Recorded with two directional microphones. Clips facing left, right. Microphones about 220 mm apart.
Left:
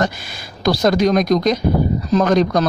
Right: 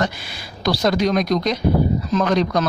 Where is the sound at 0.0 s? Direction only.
45° left (ahead or behind).